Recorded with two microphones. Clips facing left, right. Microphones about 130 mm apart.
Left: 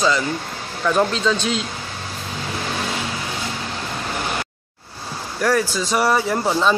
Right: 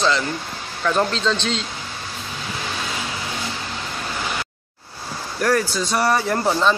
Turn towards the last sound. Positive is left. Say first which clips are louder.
# even
turn(degrees=5)  # may be behind; listen again after turning